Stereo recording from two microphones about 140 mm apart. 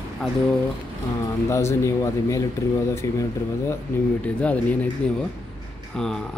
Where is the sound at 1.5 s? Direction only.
20° left (ahead or behind).